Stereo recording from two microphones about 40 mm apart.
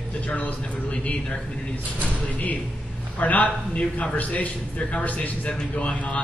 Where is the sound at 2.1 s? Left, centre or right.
Left.